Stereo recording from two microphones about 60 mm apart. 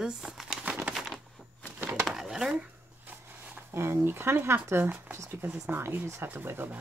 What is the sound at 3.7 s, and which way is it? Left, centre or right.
Speech, right.